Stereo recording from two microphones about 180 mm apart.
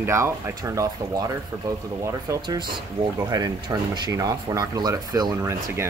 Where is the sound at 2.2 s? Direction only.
20° right (ahead or behind).